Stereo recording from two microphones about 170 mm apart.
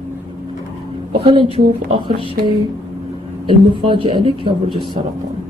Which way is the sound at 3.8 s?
30° right (ahead or behind).